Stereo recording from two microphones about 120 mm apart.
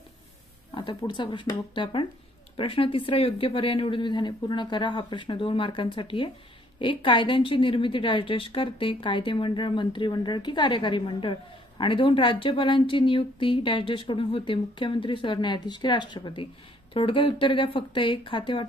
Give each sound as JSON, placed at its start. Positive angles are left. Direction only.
{"t": 0.7, "sound": "a woman's voice", "side_deg": 45}